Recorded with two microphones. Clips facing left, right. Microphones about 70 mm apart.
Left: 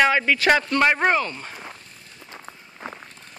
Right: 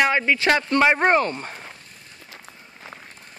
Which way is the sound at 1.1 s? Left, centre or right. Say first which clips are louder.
Right 3 dB; right.